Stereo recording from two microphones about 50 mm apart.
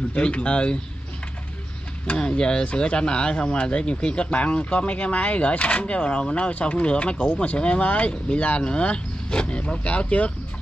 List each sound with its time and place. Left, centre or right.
0.1 s speech: left
2.0 s speech: centre